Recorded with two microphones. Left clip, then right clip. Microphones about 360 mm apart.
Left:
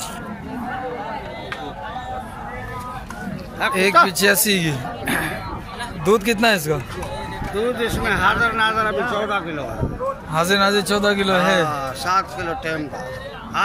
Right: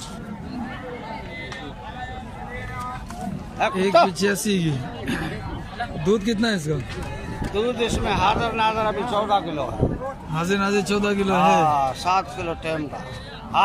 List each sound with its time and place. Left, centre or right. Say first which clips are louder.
3.6 s speech: left 1 dB; right
4.2 s a man's voice: left 6 dB; centre
7.5 s speech: left 1 dB; right
10.3 s a man's voice: left 5 dB; centre
11.7 s speech: even; right